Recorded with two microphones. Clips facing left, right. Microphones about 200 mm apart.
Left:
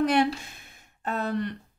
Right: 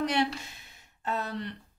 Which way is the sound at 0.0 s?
50° left (ahead or behind).